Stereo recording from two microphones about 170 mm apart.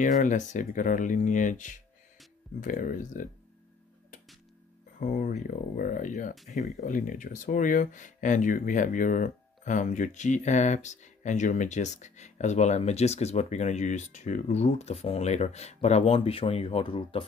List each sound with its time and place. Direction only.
0.0 s speech: 50° left (ahead or behind)
4.9 s speech: 50° left (ahead or behind); by 17.2 s 35° left (ahead or behind)